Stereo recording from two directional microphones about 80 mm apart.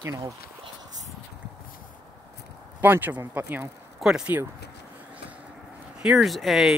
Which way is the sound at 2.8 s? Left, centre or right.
Right.